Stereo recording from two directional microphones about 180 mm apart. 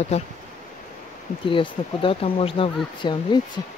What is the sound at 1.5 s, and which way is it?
Speech, 30° left (ahead or behind).